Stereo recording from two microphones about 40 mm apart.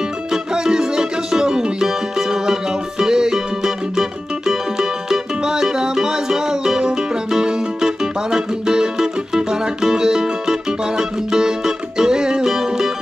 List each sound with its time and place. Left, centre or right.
0.3 s music: centre